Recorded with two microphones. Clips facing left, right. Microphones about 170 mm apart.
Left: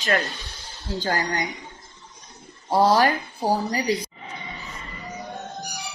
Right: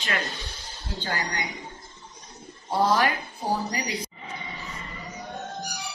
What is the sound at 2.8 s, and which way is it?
Speech, 35° left (ahead or behind).